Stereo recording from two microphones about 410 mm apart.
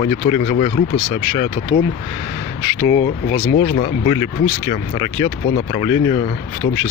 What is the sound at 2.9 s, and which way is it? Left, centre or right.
Speech, centre.